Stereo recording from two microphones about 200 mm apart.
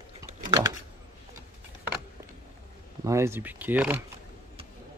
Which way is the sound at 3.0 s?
15° right (ahead or behind).